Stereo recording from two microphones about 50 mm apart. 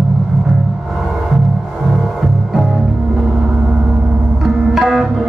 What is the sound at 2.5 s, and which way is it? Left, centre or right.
Music, centre.